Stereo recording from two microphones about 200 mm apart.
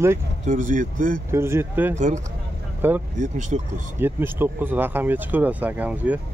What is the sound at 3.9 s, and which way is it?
Speech, 10° right (ahead or behind).